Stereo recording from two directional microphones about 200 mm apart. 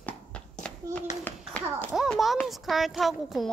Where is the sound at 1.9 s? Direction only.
Centre (ahead or behind).